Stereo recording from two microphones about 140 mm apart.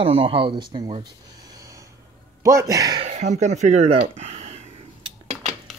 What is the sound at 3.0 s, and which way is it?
Speech, 55° right (ahead or behind).